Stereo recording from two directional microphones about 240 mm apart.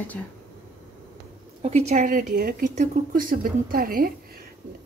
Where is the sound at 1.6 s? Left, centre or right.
Right.